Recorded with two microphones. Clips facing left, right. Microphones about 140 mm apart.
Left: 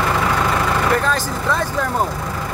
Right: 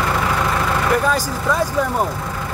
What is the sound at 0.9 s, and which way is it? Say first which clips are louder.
Speech: right 1 dB; 10° right (ahead or behind).